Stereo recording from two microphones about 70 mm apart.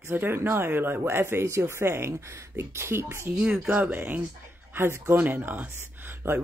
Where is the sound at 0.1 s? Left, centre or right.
Right.